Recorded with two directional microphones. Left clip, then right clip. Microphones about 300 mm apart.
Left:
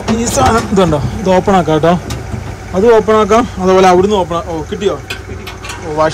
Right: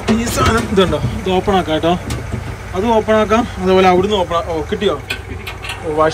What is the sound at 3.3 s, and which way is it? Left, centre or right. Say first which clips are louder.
Speech: left 4 dB; right.